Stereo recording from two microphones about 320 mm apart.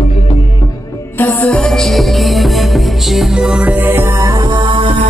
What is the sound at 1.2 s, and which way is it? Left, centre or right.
Music, centre.